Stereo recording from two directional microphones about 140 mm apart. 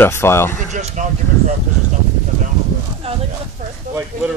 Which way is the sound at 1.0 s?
60° right (ahead or behind).